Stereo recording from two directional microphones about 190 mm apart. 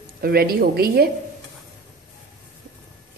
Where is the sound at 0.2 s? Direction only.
55° right (ahead or behind).